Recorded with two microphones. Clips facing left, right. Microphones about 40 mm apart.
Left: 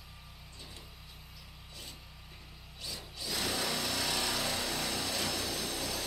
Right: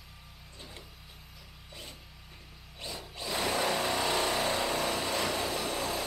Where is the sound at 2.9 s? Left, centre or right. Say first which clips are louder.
Right 3 dB; right.